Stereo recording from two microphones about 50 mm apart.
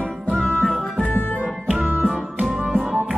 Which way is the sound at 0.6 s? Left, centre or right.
Centre.